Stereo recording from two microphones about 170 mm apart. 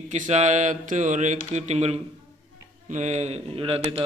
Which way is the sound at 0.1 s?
45° right (ahead or behind).